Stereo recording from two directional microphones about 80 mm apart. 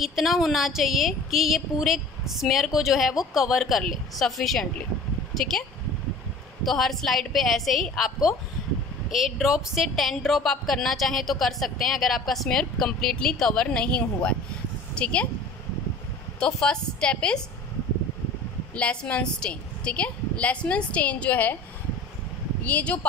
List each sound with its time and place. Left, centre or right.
0.0 s a woman's voice: centre
16.3 s a woman's voice: centre
18.8 s a woman's voice: centre
22.6 s speech: left